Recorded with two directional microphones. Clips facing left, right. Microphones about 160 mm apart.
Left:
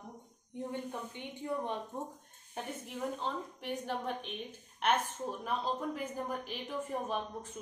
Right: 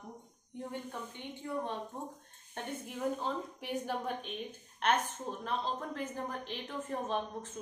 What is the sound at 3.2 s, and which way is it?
A woman's voice, 5° right (ahead or behind).